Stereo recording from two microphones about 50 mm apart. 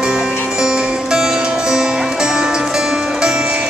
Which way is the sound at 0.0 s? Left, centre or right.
Centre.